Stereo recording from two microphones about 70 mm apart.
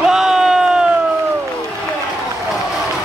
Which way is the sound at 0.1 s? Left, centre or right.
Centre.